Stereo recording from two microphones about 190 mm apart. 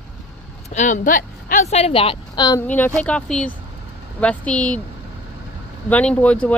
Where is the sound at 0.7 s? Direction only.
40° left (ahead or behind); by 2.6 s 20° left (ahead or behind).